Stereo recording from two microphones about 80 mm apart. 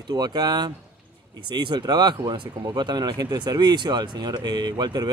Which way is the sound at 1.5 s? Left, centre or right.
Right.